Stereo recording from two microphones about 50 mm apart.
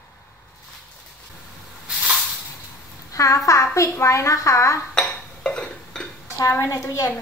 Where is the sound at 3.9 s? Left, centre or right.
Left.